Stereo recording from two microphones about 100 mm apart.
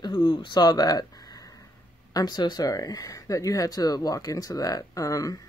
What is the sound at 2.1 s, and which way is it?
Speech, 45° left (ahead or behind).